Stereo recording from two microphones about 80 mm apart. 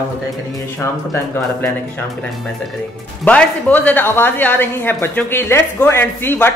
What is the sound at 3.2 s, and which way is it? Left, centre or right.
Speech, centre.